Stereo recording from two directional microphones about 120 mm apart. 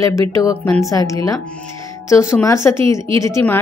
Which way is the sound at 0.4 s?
30° left (ahead or behind).